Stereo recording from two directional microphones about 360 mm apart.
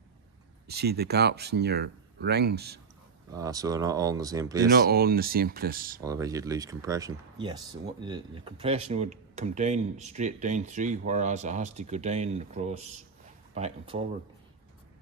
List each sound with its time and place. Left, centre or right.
0.7 s speech: right
3.3 s speech: centre
4.6 s speech: right
5.9 s speech: centre